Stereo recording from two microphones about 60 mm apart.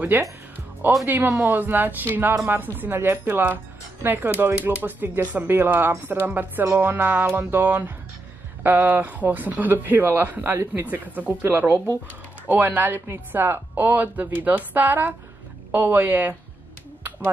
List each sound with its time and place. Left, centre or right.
0.1 s speech: right